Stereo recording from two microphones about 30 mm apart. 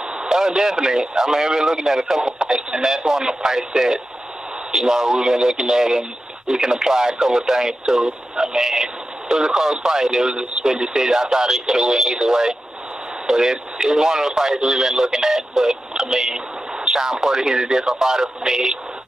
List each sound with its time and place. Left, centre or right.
0.2 s speech: right